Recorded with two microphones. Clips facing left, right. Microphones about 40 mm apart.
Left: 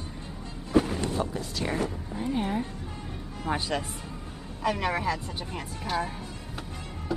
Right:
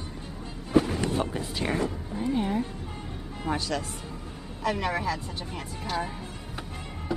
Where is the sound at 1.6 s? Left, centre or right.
Right.